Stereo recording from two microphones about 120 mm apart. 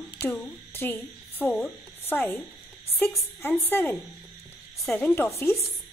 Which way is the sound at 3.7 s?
15° left (ahead or behind).